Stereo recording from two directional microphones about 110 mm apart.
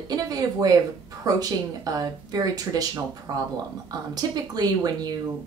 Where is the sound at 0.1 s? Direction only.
35° right (ahead or behind).